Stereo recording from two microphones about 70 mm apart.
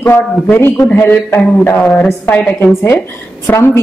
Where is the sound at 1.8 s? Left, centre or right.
Centre.